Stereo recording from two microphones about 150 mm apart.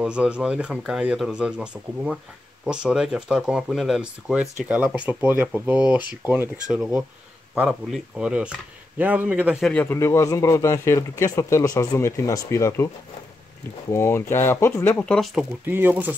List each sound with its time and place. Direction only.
0.0 s speech: 5° right (ahead or behind)
9.7 s speech: 10° left (ahead or behind)
15.6 s speech: 15° right (ahead or behind)